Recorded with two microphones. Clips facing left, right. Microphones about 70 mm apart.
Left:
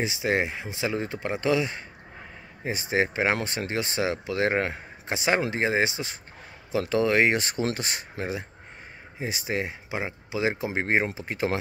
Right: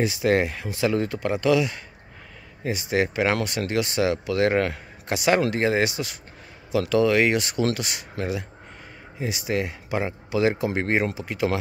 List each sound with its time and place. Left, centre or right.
0.0 s speech: centre; by 11.5 s left